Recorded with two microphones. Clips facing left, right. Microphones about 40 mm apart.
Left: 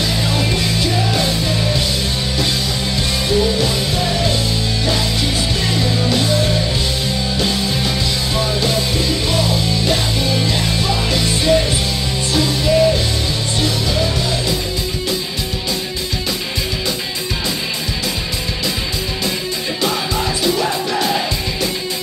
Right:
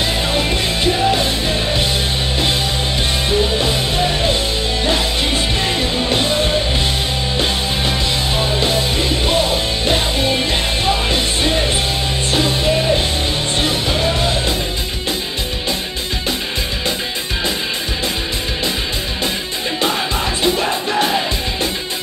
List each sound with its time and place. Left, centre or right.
0.3 s music: right
3.3 s music: right
7.3 s music: right